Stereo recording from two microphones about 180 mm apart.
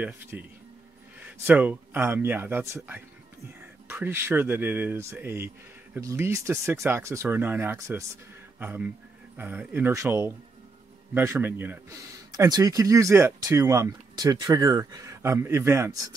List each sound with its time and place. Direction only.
0.0 s speech: 10° right (ahead or behind)